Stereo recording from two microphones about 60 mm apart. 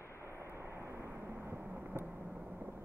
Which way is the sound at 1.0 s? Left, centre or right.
Right.